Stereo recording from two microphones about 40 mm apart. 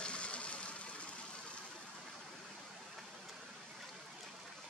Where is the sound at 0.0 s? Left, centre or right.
Left.